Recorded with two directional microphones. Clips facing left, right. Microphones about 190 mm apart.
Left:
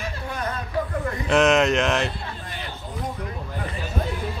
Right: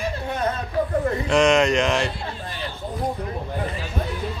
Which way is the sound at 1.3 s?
Centre (ahead or behind).